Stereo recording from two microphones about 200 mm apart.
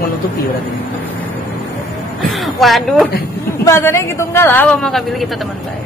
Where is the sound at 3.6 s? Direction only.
15° left (ahead or behind).